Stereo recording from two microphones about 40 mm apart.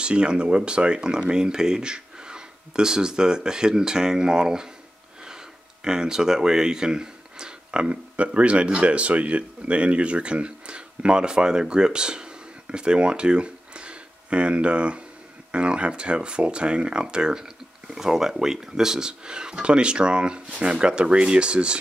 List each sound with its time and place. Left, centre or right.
0.0 s speech: right
5.9 s speech: centre